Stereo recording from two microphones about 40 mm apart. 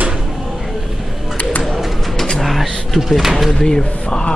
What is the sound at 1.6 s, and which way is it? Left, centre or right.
Bird, centre.